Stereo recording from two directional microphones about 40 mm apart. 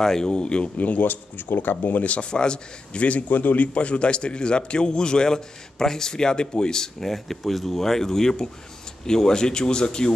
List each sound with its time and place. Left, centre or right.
0.0 s a man's voice: centre
0.7 s speech: left
2.3 s a man's voice: left